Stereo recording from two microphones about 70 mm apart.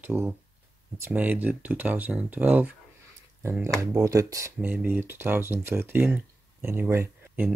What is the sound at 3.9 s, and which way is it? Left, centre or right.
Speech, right.